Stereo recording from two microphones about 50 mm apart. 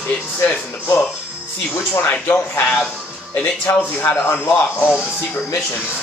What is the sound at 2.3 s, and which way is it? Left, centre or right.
Speech, left.